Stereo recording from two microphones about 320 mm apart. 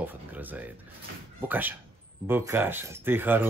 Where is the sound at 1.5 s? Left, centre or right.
Centre.